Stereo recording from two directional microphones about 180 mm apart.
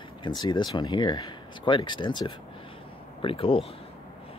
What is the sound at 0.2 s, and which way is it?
Speech, 25° left (ahead or behind).